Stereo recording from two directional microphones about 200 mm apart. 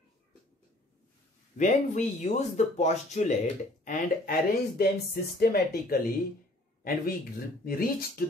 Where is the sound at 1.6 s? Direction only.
35° left (ahead or behind).